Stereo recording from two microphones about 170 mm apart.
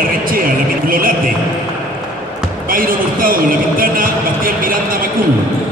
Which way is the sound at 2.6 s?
55° right (ahead or behind).